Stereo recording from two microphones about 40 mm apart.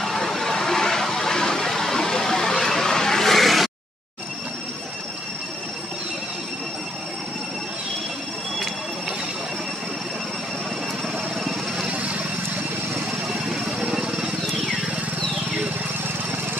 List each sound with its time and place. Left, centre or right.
0.0 s a sound: centre
11.9 s vehicle: right
13.5 s vehicle: centre